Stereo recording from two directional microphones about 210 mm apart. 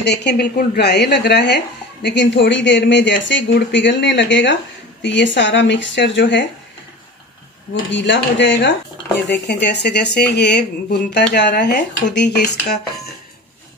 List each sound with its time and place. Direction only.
0.0 s speech: 55° left (ahead or behind)
7.9 s speech: 60° left (ahead or behind)